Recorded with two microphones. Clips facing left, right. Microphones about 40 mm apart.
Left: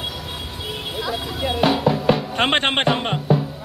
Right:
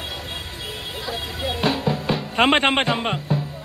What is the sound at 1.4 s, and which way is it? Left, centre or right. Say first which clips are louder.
Music: left 4 dB; left.